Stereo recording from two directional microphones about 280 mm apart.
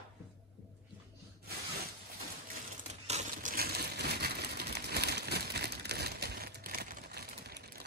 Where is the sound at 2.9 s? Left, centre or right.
Right.